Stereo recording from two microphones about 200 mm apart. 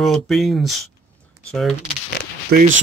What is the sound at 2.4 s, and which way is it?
Speech, 45° right (ahead or behind).